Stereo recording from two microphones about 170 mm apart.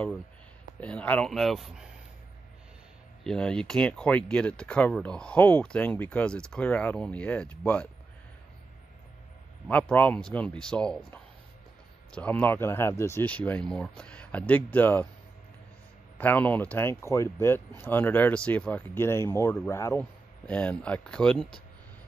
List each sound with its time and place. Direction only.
0.7 s speech: 10° left (ahead or behind)
3.3 s speech: 5° left (ahead or behind)
9.7 s speech: 10° left (ahead or behind)
16.2 s speech: 10° left (ahead or behind)